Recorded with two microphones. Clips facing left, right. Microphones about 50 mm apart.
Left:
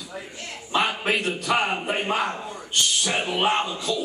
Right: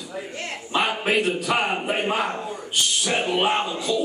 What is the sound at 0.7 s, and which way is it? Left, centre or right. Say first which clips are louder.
A man's voice: right 1 dB; centre.